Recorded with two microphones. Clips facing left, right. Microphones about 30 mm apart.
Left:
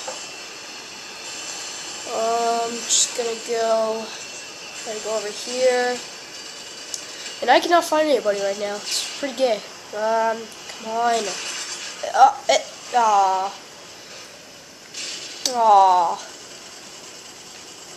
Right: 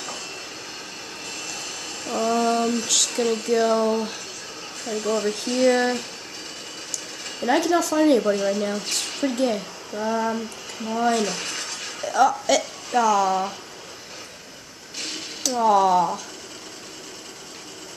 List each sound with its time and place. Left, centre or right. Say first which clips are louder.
1.2 s speech: right 1 dB; centre
7.4 s speech: left 4 dB; left
7.9 s speech: even; centre
8.2 s speech: even; centre
9.4 s speech: left 5 dB; left
9.9 s a sound: left 4 dB; centre
10.8 s speech: left 2 dB; centre
11.1 s a sound: right 1 dB; centre
12.1 s a woman's voice: left 4 dB; centre
15.0 s a sound: right 1 dB; centre
15.5 s a woman's voice: left 4 dB; centre